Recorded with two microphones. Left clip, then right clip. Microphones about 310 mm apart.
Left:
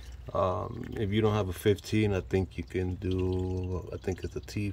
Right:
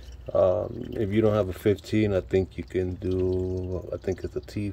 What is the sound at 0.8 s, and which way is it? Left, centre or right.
Speech, centre.